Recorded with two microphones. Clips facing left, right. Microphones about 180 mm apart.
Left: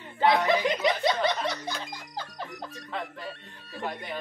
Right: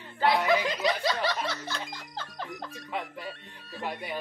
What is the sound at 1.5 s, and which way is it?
Music, 15° left (ahead or behind).